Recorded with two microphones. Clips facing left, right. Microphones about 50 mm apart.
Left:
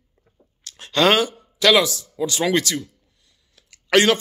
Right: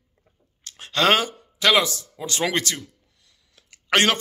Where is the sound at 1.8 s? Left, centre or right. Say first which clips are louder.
Left 6 dB; right.